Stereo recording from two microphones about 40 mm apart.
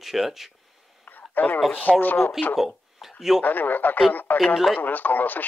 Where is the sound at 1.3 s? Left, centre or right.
Left.